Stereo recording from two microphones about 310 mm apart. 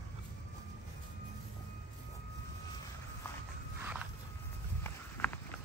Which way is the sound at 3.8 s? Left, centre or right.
Centre.